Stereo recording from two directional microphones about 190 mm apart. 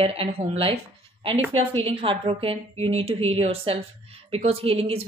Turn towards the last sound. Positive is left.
turn(degrees=-30)  # may be behind; listen again after turning